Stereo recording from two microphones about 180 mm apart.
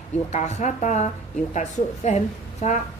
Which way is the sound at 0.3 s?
40° left (ahead or behind).